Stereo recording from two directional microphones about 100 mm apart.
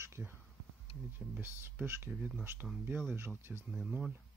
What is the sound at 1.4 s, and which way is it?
Speech, 20° right (ahead or behind).